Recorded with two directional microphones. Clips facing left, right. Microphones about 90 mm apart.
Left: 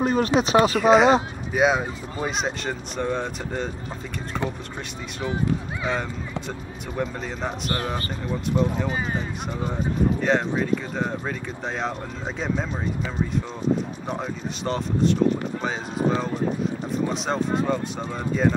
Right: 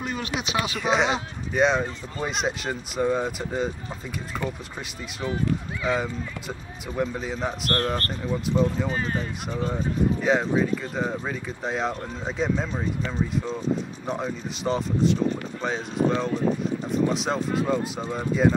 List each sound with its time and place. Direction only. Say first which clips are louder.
0.0 s speech: left 9 dB; 40° left (ahead or behind)
0.7 s speech: left 6 dB; centre (ahead or behind)
7.0 s speech: right 1 dB; centre (ahead or behind)